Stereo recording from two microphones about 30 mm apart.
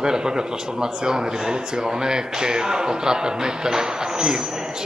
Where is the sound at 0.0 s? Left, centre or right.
Right.